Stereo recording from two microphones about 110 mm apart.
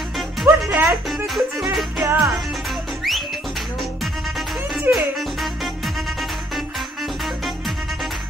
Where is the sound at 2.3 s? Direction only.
Centre (ahead or behind).